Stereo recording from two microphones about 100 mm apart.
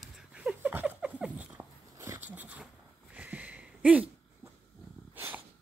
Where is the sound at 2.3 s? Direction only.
15° right (ahead or behind).